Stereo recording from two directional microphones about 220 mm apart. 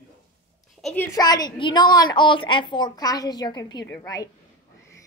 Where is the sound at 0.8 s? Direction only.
10° left (ahead or behind).